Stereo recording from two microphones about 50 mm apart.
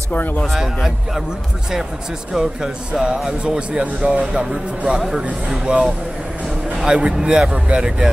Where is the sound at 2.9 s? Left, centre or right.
Right.